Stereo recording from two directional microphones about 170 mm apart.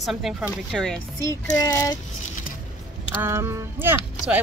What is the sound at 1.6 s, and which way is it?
Speech, 20° left (ahead or behind).